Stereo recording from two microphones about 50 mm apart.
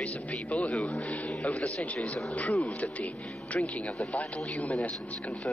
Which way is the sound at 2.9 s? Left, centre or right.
Left.